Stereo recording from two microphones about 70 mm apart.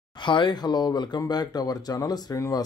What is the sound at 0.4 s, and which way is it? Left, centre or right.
Speech, left.